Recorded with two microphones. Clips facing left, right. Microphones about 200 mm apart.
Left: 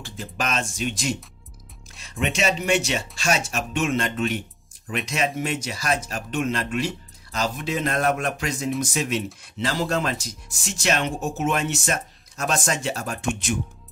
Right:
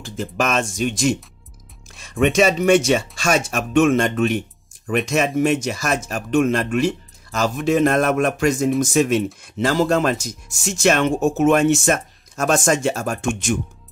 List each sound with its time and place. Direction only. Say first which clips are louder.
0.4 s speech: right 6 dB; 50° right (ahead or behind)
2.2 s speech: right 8 dB; 50° right (ahead or behind)